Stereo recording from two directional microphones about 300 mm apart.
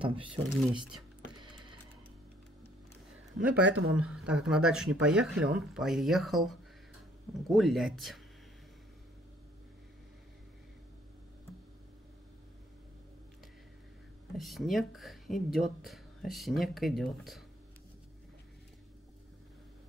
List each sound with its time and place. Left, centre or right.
0.0 s speech: centre
0.6 s speech: centre
3.5 s speech: right
3.9 s speech: centre
14.3 s speech: centre